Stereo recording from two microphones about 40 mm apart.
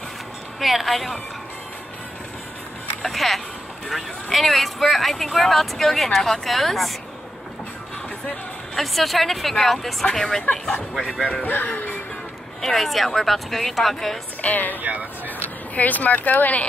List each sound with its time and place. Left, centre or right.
0.6 s speech: centre
3.1 s speech: centre
8.7 s speech: centre
11.0 s speech: centre
11.4 s speech: left
12.6 s speech: centre
14.4 s a woman's voice: left
14.8 s speech: right
15.2 s speech: left